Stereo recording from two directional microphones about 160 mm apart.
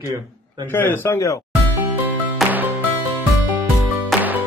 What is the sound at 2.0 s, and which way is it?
Music, 10° right (ahead or behind).